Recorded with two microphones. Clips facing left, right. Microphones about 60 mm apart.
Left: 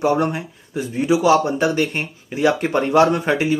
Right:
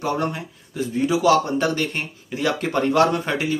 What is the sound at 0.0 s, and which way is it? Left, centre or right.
Speech, left.